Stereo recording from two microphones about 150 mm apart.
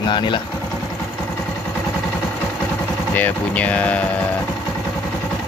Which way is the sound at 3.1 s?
10° left (ahead or behind).